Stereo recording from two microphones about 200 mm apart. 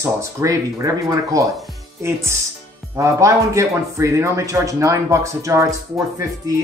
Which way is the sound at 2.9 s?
15° right (ahead or behind).